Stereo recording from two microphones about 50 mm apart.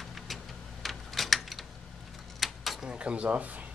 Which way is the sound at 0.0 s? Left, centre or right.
Centre.